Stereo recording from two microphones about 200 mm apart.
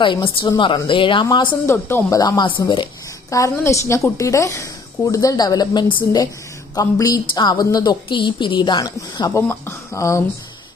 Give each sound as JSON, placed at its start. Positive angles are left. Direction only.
{"t": 0.0, "sound": "a woman's voice", "side_deg": 25}